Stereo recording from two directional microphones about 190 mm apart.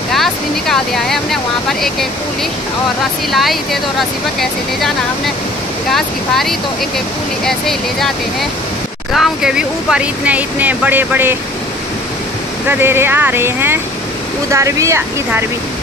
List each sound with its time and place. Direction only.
0.1 s speech: centre (ahead or behind)
3.3 s speech: centre (ahead or behind)
5.9 s speech: centre (ahead or behind)
12.6 s speech: 10° right (ahead or behind)